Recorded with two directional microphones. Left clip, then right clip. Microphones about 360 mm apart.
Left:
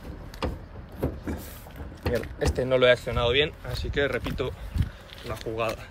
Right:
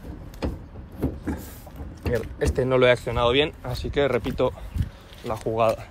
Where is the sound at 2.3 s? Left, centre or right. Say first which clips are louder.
Right 3 dB; centre.